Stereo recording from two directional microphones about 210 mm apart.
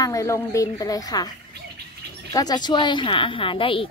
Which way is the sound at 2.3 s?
20° left (ahead or behind).